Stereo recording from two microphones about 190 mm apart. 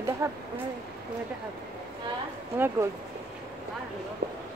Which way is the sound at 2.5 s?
10° right (ahead or behind).